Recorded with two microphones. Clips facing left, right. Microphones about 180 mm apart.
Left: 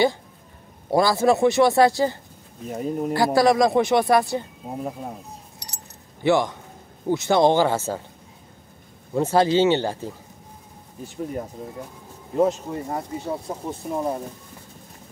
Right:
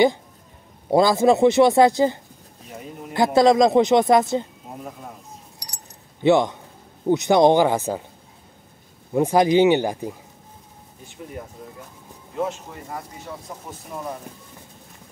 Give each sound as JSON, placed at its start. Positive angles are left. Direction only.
{"t": 0.8, "sound": "a man's voice", "side_deg": -20}
{"t": 2.7, "sound": "speech", "side_deg": 40}
{"t": 3.3, "sound": "a man's voice", "side_deg": -20}
{"t": 5.6, "sound": "keys jangling", "side_deg": 25}
{"t": 6.2, "sound": "a man's voice", "side_deg": -20}
{"t": 9.1, "sound": "speech", "side_deg": -15}
{"t": 12.4, "sound": "speech", "side_deg": 40}